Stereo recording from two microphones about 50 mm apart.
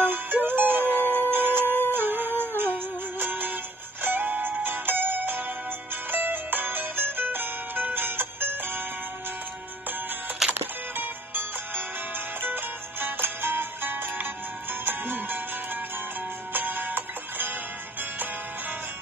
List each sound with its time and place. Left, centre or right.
0.0 s music: right
10.5 s music: right